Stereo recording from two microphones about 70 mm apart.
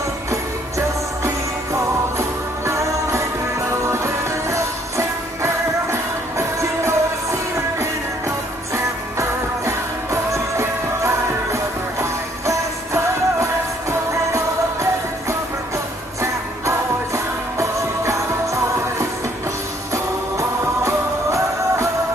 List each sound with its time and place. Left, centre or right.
0.3 s jingle bell: right
3.8 s music: right
8.7 s music: right
16.2 s jingle bell: right
19.9 s music: right